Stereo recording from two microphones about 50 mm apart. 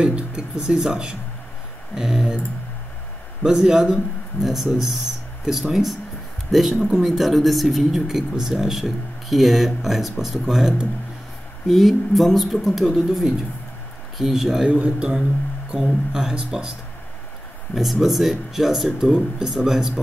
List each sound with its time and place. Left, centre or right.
0.0 s a man's voice: centre
3.4 s a man's voice: centre
11.6 s a man's voice: centre
14.7 s a man's voice: right
15.7 s a man's voice: centre
17.7 s a man's voice: centre